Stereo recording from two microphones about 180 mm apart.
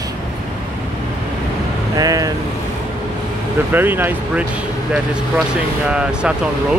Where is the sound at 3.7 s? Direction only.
10° right (ahead or behind).